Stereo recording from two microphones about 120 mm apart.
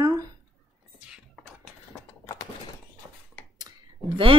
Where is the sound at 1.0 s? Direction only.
5° right (ahead or behind).